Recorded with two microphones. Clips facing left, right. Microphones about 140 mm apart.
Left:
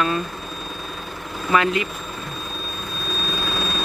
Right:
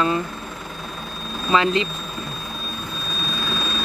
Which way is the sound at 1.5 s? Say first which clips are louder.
Right 1 dB; 25° right (ahead or behind).